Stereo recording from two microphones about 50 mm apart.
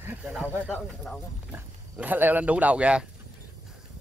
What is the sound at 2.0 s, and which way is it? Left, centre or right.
Speech, right.